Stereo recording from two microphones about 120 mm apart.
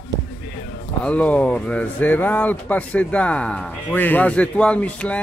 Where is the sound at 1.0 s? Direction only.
10° left (ahead or behind).